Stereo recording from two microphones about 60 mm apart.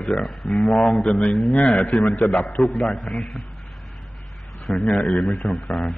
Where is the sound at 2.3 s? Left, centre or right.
Centre.